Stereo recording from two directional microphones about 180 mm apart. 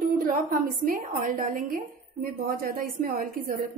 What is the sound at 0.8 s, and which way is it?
A woman's voice, 50° right (ahead or behind).